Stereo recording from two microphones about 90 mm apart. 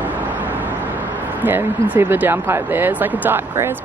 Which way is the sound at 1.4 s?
20° right (ahead or behind).